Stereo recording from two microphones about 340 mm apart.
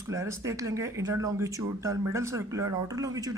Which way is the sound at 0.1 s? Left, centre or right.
Centre.